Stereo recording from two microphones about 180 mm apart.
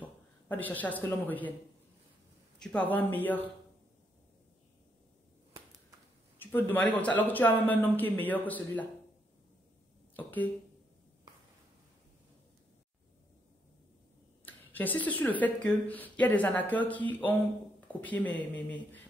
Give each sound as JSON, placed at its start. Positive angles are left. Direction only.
{"t": 0.0, "sound": "speech", "side_deg": 10}
{"t": 2.6, "sound": "speech", "side_deg": 5}
{"t": 5.5, "sound": "whip", "side_deg": -20}
{"t": 6.4, "sound": "speech", "side_deg": 10}
{"t": 10.1, "sound": "speech", "side_deg": 10}
{"t": 14.4, "sound": "speech", "side_deg": 10}